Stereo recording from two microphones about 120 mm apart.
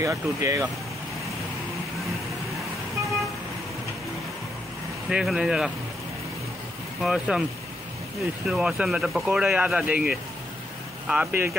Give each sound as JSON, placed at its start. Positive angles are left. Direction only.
{"t": 0.0, "sound": "speech", "side_deg": -25}
{"t": 5.1, "sound": "speech", "side_deg": -5}
{"t": 7.0, "sound": "speech", "side_deg": -5}
{"t": 8.5, "sound": "speech", "side_deg": -5}